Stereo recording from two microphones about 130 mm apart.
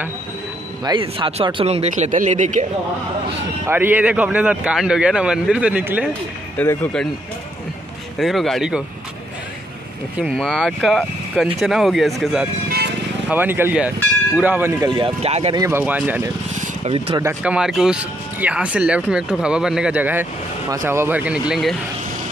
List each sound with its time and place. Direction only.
0.8 s speech: 40° right (ahead or behind); by 2.6 s 70° right (ahead or behind)
3.6 s speech: 15° right (ahead or behind)
6.6 s speech: 15° left (ahead or behind)
8.2 s speech: centre (ahead or behind)
10.2 s speech: 5° left (ahead or behind)
13.3 s speech: 15° right (ahead or behind)
15.0 s speech: 40° right (ahead or behind)
15.7 s speech: 15° right (ahead or behind)
16.5 s vehicle: 70° right (ahead or behind)
17.4 s speech: 5° right (ahead or behind)